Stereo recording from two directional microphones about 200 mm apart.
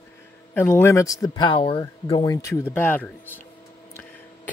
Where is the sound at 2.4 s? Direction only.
15° left (ahead or behind).